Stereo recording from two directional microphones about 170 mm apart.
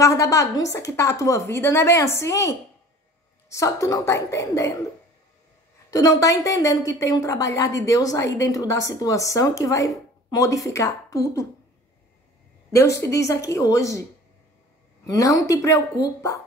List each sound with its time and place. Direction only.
0.0 s a woman's voice: 20° left (ahead or behind)
5.9 s a woman's voice: 20° left (ahead or behind)
12.7 s a woman's voice: 15° left (ahead or behind)
15.0 s a woman's voice: 20° left (ahead or behind)